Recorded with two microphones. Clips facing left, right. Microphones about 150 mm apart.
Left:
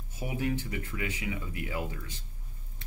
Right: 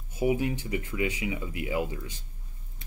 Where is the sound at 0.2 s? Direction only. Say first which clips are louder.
Right 6 dB; 15° right (ahead or behind).